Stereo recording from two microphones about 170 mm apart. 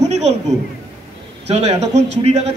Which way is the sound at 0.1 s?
40° right (ahead or behind).